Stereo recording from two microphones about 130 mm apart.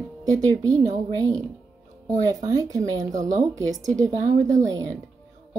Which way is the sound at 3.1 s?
70° right (ahead or behind).